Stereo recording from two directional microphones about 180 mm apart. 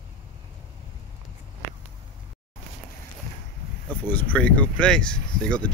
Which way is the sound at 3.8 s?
10° left (ahead or behind).